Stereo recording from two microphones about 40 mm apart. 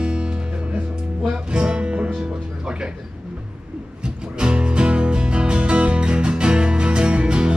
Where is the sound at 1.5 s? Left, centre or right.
Right.